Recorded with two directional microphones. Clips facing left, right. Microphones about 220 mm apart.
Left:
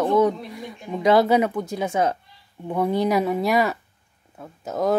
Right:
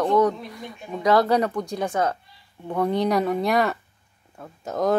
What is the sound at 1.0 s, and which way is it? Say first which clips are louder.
Speech: left 2 dB; 25° left (ahead or behind).